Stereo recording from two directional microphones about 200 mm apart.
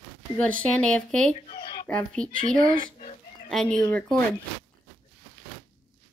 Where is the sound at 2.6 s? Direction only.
35° left (ahead or behind).